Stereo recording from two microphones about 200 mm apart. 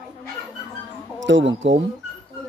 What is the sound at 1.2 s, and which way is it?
Speech, 65° right (ahead or behind).